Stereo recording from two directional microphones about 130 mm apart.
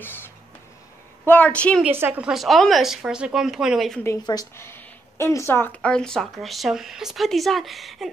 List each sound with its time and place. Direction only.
0.0 s a sound: 15° left (ahead or behind)
1.2 s a woman's voice: 10° left (ahead or behind)
2.0 s a woman's voice: 15° right (ahead or behind)
2.3 s speech: centre (ahead or behind)
4.0 s speech: 25° left (ahead or behind); by 8.1 s centre (ahead or behind)